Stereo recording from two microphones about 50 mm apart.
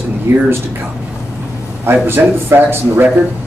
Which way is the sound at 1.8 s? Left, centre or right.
Right.